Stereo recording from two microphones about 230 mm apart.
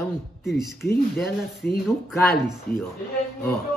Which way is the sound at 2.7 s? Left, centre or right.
Centre.